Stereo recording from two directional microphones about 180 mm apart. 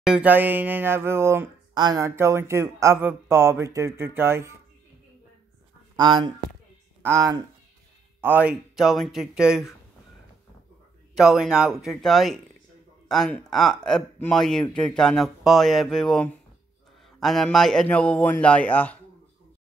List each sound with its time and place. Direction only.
0.0 s speech: 5° right (ahead or behind)
5.9 s speech: 25° right (ahead or behind); by 9.8 s 5° right (ahead or behind)
11.1 s a man's voice: centre (ahead or behind)